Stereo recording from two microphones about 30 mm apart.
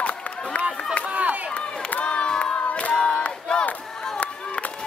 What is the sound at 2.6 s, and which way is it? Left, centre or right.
Crowd, left.